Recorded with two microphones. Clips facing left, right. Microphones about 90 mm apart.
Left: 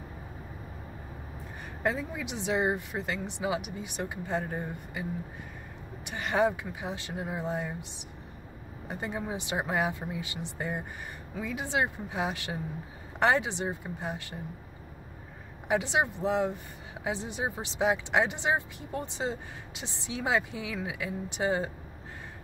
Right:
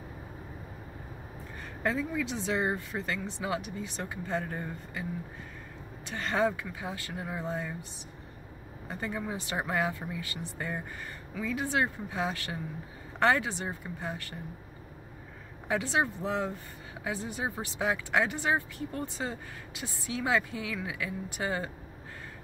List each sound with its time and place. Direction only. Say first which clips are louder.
1.8 s speech: right 1 dB; 20° left (ahead or behind)
6.0 s speech: left 2 dB; 15° left (ahead or behind)
15.7 s speech: left 2 dB; 20° left (ahead or behind)